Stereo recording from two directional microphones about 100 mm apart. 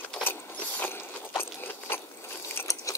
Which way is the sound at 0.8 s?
25° left (ahead or behind).